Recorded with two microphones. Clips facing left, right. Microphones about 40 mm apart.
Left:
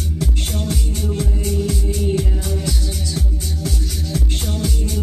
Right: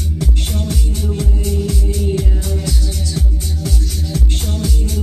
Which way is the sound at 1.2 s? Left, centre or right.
Centre.